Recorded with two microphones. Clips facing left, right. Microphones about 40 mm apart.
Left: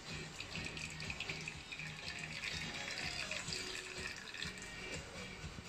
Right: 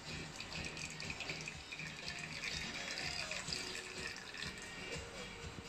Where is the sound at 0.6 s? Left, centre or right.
Centre.